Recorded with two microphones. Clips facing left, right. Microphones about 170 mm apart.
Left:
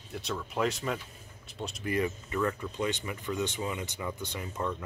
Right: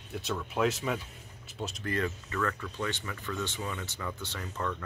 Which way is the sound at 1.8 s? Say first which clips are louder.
Left 3 dB; 10° left (ahead or behind).